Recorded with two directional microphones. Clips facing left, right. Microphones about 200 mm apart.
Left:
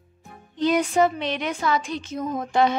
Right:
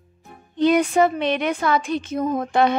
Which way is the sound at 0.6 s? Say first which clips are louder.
Right 3 dB; 60° right (ahead or behind).